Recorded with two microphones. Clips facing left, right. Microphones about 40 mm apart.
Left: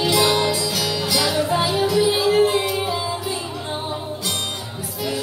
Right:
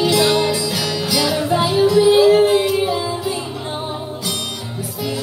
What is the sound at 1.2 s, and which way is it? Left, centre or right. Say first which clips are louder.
Music: right 3 dB; centre.